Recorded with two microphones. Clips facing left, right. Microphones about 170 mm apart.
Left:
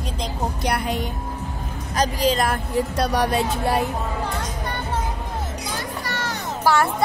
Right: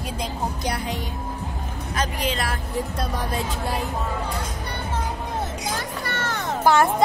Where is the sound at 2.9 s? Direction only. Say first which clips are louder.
Left 6 dB; 80° left.